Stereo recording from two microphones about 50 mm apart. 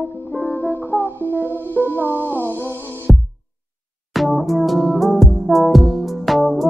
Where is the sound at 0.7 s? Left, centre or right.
Left.